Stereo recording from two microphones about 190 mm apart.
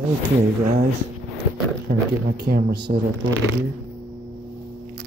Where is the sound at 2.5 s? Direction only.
60° right (ahead or behind).